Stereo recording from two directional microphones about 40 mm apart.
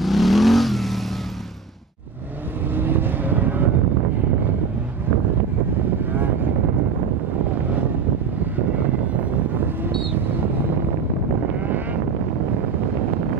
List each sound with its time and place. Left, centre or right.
0.0 s vehicle: centre
2.7 s vehicle: right
11.6 s vehicle: right